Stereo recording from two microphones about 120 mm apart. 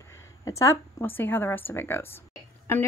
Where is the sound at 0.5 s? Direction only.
25° left (ahead or behind).